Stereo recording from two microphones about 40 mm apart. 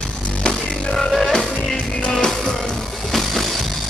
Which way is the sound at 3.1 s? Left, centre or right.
Centre.